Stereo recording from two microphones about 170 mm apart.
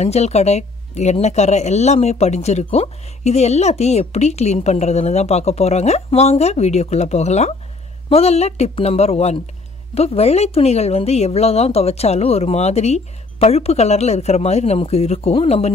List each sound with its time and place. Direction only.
0.0 s speech: 40° left (ahead or behind)